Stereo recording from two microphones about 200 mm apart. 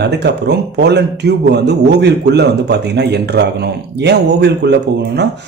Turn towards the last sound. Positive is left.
turn(degrees=-60)  # may be behind; listen again after turning